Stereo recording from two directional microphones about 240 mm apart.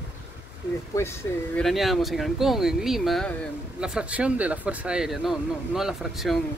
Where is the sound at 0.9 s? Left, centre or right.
Centre.